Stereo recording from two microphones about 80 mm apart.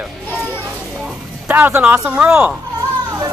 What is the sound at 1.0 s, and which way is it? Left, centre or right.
Music, centre.